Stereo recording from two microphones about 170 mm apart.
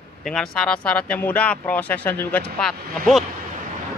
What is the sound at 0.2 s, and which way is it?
Speech, 5° left (ahead or behind).